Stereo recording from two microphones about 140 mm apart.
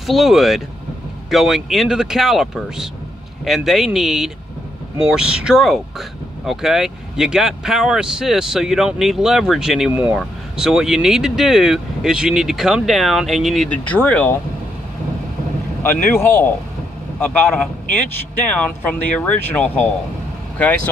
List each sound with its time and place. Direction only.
0.0 s speech: centre (ahead or behind)
15.8 s a man's voice: 15° left (ahead or behind)